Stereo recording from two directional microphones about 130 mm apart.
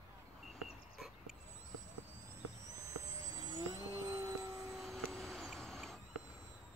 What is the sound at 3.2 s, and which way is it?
Vehicle, 30° right (ahead or behind).